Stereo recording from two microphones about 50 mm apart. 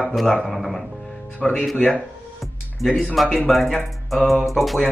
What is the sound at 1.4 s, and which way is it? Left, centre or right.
Speech, centre.